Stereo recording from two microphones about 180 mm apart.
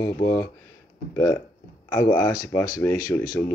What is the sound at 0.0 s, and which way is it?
Speech, 20° left (ahead or behind).